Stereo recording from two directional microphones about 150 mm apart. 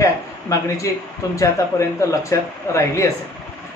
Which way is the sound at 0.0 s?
20° left (ahead or behind).